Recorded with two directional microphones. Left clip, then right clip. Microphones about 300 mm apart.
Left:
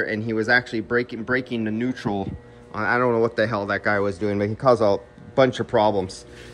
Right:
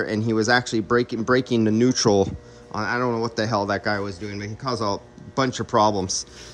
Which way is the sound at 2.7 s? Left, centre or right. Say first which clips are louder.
Left 3 dB; centre.